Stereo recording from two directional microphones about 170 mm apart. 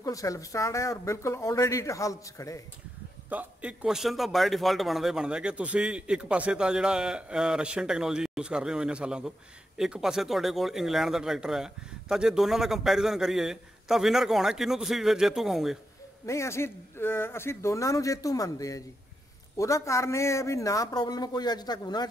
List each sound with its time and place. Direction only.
0.0 s speech: 20° left (ahead or behind)
3.3 s a man's voice: 10° right (ahead or behind)
16.3 s speech: 15° left (ahead or behind)